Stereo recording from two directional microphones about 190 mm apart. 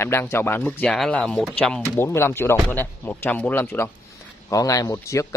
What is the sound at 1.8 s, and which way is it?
Speech, 15° left (ahead or behind).